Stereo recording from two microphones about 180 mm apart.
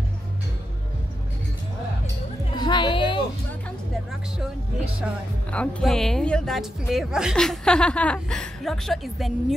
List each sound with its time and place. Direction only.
2.5 s music: 25° left (ahead or behind)
5.0 s speech: 5° right (ahead or behind)